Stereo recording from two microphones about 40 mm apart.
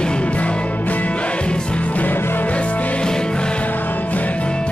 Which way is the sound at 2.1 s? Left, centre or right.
Left.